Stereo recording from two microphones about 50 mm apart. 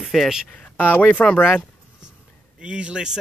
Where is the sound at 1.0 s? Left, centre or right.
Left.